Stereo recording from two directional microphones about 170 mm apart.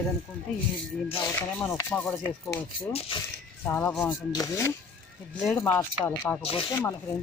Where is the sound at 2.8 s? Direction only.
35° left (ahead or behind).